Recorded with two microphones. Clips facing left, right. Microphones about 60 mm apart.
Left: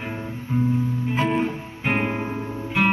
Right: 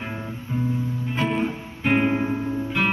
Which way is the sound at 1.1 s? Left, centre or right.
Centre.